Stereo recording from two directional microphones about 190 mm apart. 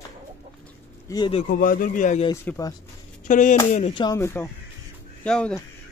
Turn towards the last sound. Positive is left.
turn(degrees=5)  # may be behind; listen again after turning